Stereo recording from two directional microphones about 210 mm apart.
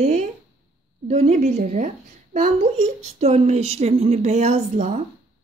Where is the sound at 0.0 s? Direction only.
35° right (ahead or behind).